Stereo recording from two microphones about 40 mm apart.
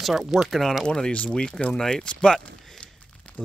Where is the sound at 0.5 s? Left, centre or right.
Centre.